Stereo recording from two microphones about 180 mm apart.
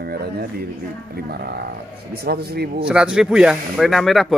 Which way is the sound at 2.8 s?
5° right (ahead or behind).